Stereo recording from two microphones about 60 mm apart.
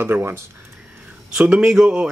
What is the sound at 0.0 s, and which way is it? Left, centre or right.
Speech, right.